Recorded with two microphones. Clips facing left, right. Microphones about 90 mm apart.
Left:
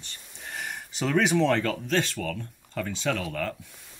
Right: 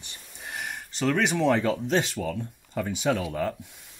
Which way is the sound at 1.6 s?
20° right (ahead or behind).